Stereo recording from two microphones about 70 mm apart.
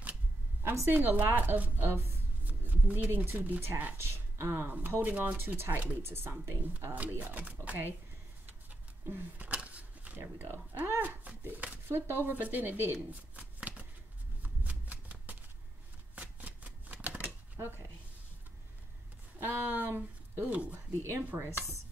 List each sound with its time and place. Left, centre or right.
0.6 s a woman's voice: right
2.4 s a sound: right
3.3 s a woman's voice: right
5.0 s a woman's voice: right
8.5 s a sound: right
11.9 s a woman's voice: right
13.1 s shuffling cards: right
17.6 s speech: right
19.5 s speech: right
21.3 s a woman's voice: right